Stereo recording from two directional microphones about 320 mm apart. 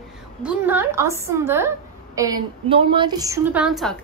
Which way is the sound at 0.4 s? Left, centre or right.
Centre.